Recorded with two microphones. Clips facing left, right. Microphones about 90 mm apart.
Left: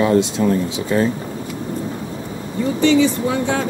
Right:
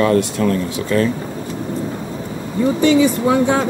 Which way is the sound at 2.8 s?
15° right (ahead or behind).